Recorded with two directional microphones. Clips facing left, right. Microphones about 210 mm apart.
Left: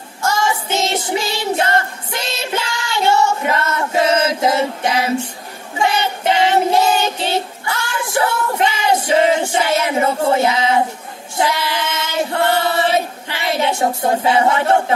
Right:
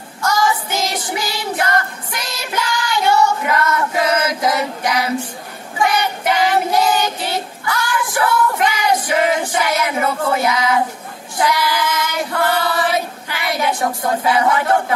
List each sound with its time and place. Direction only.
0.2 s child singing: 25° left (ahead or behind)
11.3 s female singing: 25° left (ahead or behind)